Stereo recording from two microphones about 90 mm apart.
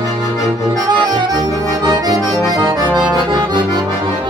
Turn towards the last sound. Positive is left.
turn(degrees=-50)  # may be behind; listen again after turning